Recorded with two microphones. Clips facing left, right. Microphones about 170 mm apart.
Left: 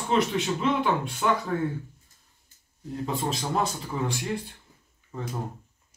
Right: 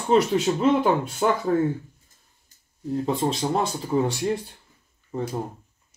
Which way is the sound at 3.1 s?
30° right (ahead or behind).